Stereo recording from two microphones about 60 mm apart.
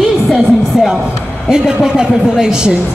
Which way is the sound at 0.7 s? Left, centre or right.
Centre.